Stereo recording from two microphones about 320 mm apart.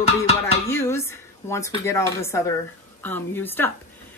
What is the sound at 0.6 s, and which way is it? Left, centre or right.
A woman's voice, centre.